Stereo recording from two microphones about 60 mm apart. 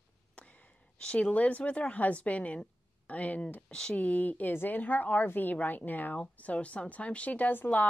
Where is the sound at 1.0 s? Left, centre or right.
Left.